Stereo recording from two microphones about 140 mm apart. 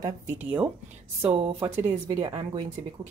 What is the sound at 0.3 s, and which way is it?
Speech, 10° right (ahead or behind).